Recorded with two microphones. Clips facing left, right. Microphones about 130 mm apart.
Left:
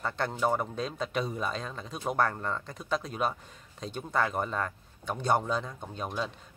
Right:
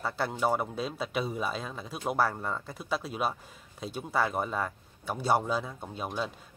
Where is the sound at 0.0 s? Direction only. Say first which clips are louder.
Even; 5° right (ahead or behind).